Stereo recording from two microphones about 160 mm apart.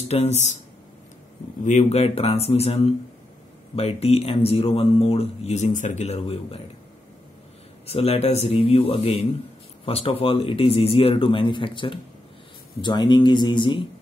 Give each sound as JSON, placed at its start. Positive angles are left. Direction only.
{"t": 0.1, "sound": "speech", "side_deg": 45}
{"t": 1.6, "sound": "speech", "side_deg": 50}
{"t": 7.8, "sound": "speech", "side_deg": 40}